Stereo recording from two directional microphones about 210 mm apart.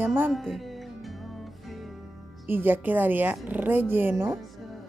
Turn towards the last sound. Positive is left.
turn(degrees=-10)  # may be behind; listen again after turning